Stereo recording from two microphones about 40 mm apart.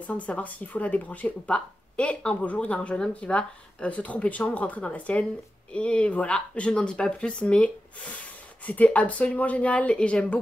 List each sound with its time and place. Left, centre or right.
0.0 s speech: left